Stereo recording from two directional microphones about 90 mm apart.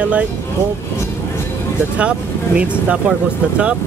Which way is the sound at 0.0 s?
15° right (ahead or behind).